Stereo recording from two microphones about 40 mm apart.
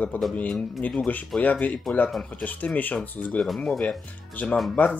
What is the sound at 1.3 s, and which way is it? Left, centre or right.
Speech, centre.